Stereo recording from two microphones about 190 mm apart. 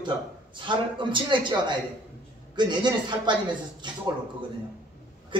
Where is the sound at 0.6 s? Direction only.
25° right (ahead or behind).